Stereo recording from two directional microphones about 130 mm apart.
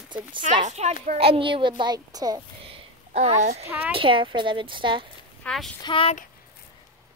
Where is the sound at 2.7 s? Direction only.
50° right (ahead or behind).